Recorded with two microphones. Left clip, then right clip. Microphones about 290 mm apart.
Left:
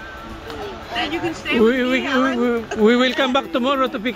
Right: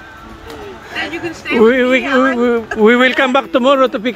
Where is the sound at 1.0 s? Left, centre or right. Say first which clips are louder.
Right 2 dB; centre.